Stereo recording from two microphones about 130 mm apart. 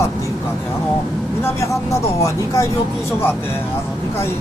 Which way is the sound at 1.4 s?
25° left (ahead or behind).